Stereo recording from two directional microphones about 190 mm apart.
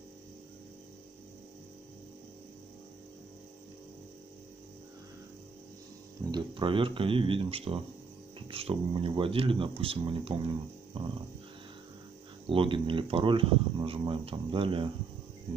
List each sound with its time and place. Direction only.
6.3 s speech: 25° right (ahead or behind)
12.4 s speech: 30° right (ahead or behind)